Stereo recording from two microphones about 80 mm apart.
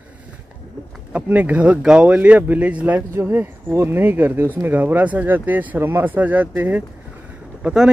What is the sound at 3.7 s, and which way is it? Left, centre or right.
Speech, right.